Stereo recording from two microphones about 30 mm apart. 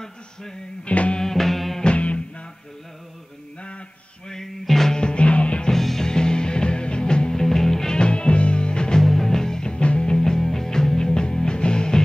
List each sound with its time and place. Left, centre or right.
0.0 s music: centre
0.8 s music: left
1.2 s music: centre
2.0 s music: left
4.3 s music: centre
4.9 s music: left
5.7 s music: centre
6.0 s music: left
7.4 s music: centre
7.9 s music: left
9.0 s music: centre
9.8 s music: left
10.0 s music: left